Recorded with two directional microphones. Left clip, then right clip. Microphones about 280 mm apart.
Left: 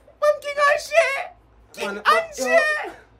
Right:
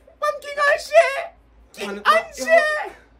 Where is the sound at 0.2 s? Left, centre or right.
Centre.